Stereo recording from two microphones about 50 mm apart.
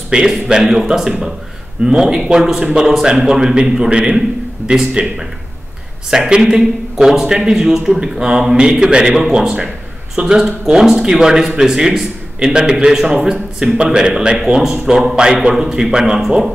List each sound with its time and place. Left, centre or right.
0.1 s a man's voice: centre
6.0 s a man's voice: centre